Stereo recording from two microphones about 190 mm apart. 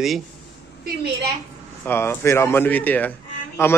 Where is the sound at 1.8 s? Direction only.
10° left (ahead or behind).